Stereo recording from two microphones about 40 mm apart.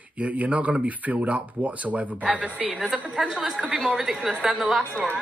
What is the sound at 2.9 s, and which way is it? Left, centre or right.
Speech, right.